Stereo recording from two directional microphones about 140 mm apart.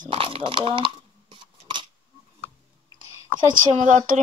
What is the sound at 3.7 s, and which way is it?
Speech, 60° right (ahead or behind).